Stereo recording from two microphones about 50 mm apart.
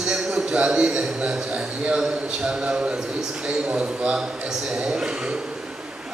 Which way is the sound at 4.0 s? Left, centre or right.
Centre.